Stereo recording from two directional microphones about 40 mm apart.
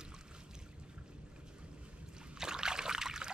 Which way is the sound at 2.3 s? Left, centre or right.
Centre.